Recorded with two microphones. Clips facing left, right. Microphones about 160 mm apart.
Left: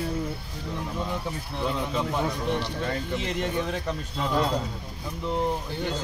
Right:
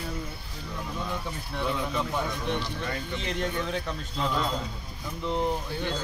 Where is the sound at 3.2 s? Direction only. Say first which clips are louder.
Left 2 dB; 5° left (ahead or behind).